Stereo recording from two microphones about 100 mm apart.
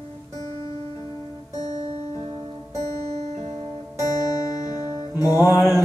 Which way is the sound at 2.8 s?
40° left (ahead or behind).